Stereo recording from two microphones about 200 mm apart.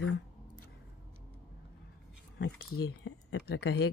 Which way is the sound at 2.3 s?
60° left (ahead or behind).